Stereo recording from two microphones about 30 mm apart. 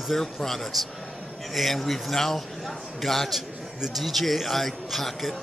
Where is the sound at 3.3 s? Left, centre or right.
Centre.